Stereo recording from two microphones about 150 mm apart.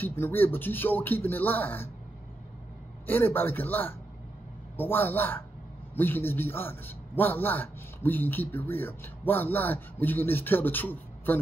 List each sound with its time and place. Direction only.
0.0 s a man's voice: 15° left (ahead or behind)
3.1 s a man's voice: 15° left (ahead or behind)